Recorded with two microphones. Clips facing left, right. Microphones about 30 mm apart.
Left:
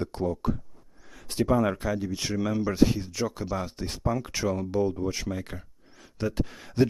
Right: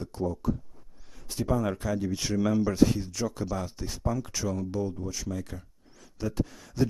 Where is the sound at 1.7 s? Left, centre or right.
Centre.